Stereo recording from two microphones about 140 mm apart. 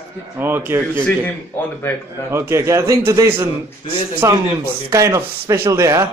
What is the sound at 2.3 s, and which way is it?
A man's voice, 20° right (ahead or behind).